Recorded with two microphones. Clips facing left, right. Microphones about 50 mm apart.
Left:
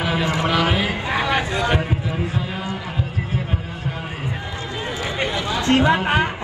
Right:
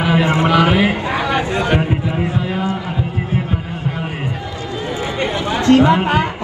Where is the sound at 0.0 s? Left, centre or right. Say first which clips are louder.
Right 6 dB; right.